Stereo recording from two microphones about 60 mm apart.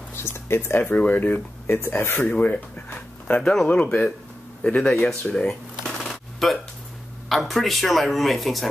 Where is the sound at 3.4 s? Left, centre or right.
Centre.